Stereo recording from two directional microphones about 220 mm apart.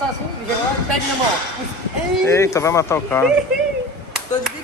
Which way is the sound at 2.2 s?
15° left (ahead or behind).